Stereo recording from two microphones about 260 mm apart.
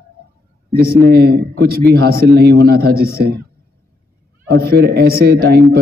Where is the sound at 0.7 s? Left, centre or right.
Right.